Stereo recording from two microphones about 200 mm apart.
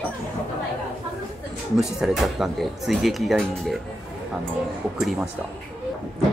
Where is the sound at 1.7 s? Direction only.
Centre (ahead or behind).